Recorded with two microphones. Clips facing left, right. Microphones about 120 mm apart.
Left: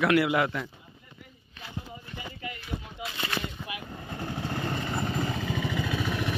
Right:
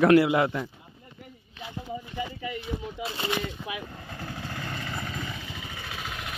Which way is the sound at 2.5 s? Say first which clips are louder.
Right 5 dB; 30° right (ahead or behind).